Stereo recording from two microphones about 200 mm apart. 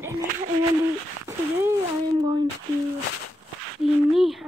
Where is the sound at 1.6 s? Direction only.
20° right (ahead or behind).